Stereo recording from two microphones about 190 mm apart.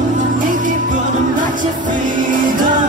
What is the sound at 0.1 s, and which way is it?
Music, 45° right (ahead or behind).